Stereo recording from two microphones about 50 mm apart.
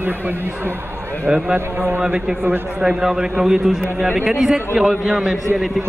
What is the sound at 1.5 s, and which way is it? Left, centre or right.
Speech, right.